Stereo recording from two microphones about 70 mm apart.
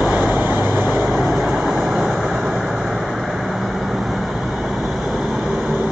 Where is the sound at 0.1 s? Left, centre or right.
Centre.